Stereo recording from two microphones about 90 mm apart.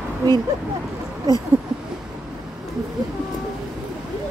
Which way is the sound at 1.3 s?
45° right (ahead or behind).